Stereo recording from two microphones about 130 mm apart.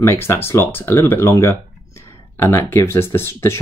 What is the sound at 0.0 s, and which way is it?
Speech, 20° left (ahead or behind).